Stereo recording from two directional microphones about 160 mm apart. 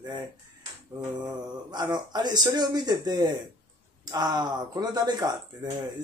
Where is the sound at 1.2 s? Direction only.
25° right (ahead or behind).